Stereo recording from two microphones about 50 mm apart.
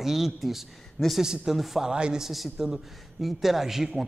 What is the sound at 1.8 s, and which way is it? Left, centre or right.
Speech, centre.